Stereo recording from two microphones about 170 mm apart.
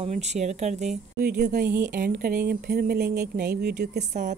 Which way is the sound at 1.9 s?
60° right (ahead or behind).